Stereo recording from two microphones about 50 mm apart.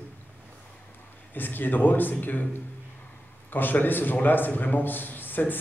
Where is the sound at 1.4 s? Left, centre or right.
Left.